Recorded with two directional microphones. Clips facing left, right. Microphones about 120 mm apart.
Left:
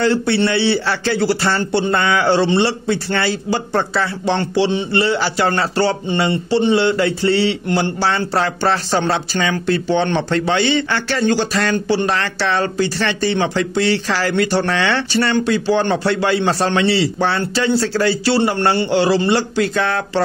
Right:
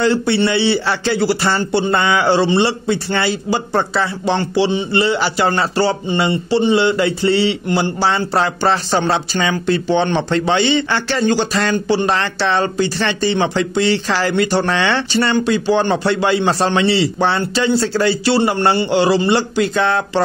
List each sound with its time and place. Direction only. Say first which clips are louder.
0.0 s speech: right 1 dB; 15° right (ahead or behind)
12.1 s speech: right 2 dB; 25° right (ahead or behind)